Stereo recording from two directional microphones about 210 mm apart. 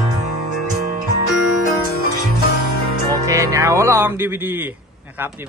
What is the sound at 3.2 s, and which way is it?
Speech, 15° right (ahead or behind).